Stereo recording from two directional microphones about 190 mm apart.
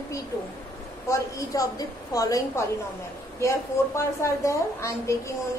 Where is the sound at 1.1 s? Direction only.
15° left (ahead or behind).